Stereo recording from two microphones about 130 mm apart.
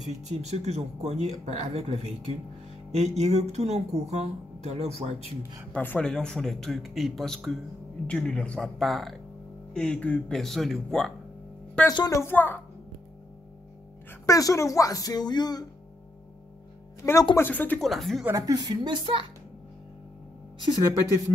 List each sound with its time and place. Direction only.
0.0 s speech: 60° right (ahead or behind)
5.7 s a man's voice: 10° left (ahead or behind)
11.9 s speech: 30° left (ahead or behind)
14.2 s speech: 25° left (ahead or behind)
17.0 s speech: 20° left (ahead or behind)
17.8 s a man's voice: centre (ahead or behind)
18.3 s speech: 25° right (ahead or behind)